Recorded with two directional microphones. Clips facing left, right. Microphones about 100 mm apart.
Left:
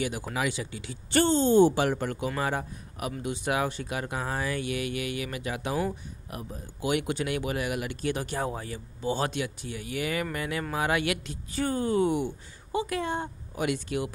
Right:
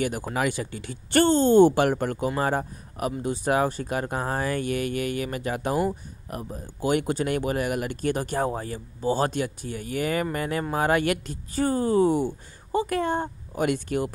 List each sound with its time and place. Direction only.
0.0 s speech: 45° right (ahead or behind)
12.7 s speech: 45° right (ahead or behind)